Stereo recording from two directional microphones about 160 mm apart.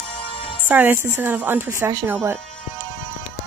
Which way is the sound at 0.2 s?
35° left (ahead or behind).